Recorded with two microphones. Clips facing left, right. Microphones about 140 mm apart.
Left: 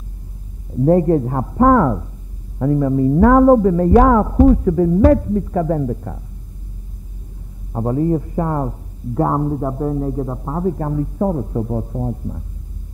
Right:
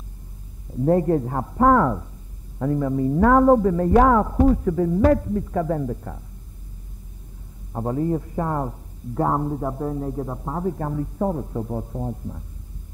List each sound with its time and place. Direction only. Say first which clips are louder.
0.8 s a man's voice: left 5 dB; 30° left (ahead or behind)
7.7 s a man's voice: left 5 dB; 30° left (ahead or behind)